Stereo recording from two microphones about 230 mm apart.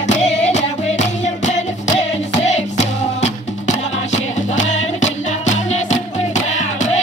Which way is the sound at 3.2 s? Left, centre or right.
Left.